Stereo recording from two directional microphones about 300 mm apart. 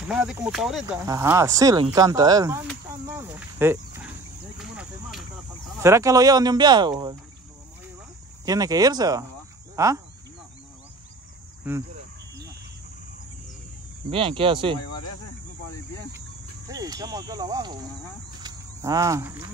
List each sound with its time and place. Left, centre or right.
0.1 s speech: centre
4.6 s a sound: centre
5.8 s speech: centre
8.5 s speech: centre
11.7 s speech: centre
14.1 s speech: centre
16.6 s speech: centre
18.4 s a sound: centre